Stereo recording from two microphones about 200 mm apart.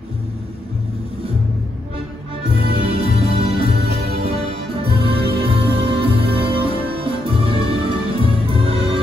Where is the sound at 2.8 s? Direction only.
30° right (ahead or behind).